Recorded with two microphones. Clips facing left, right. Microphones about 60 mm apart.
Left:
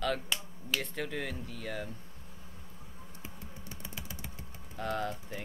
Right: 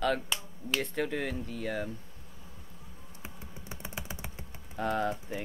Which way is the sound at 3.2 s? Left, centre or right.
Right.